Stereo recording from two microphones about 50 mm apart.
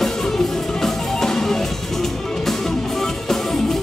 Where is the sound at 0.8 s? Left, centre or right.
Centre.